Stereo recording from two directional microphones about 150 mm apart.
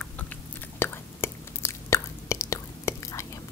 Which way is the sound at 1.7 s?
20° left (ahead or behind).